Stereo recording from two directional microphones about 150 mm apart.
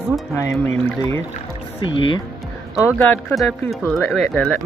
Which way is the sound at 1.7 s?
35° left (ahead or behind).